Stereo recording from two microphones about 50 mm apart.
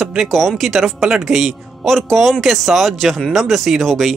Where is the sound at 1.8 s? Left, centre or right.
Centre.